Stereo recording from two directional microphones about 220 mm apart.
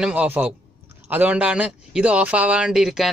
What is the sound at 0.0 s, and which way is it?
A man's voice, 5° right (ahead or behind).